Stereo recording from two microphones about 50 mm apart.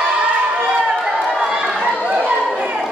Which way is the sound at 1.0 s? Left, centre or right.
Centre.